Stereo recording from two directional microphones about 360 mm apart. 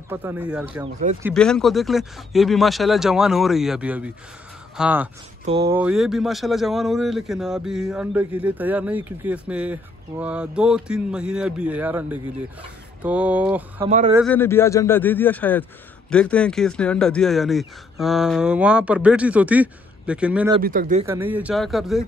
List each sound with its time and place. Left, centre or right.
0.1 s speech: centre
13.8 s speech: centre
14.1 s speech: centre
20.6 s speech: right
21.1 s speech: centre